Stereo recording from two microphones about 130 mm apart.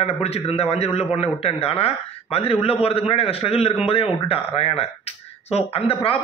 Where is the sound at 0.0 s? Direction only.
50° left (ahead or behind).